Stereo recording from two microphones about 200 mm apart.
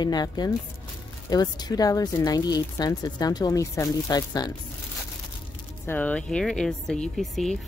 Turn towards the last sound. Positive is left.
turn(degrees=0)  # may be behind; listen again after turning